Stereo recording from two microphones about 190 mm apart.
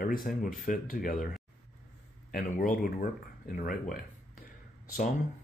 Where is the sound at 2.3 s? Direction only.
45° left (ahead or behind).